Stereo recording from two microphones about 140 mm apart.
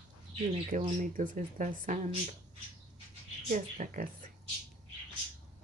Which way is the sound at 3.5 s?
60° right (ahead or behind).